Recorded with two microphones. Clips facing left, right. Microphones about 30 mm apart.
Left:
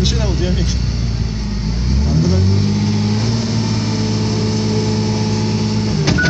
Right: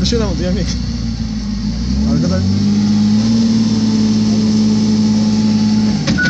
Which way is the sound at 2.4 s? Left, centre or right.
Left.